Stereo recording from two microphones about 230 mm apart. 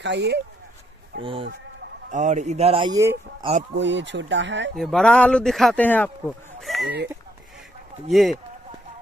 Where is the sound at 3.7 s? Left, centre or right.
Right.